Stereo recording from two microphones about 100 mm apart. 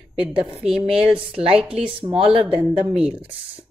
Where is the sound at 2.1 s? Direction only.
80° right.